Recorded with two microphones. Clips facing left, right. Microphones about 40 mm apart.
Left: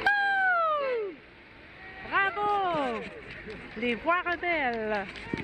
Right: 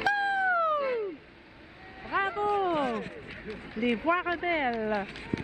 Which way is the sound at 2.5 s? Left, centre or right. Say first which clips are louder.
Even; left.